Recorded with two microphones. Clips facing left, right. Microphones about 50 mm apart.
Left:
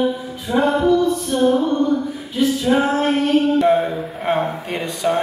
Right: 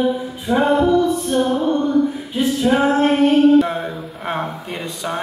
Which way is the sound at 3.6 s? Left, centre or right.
Centre.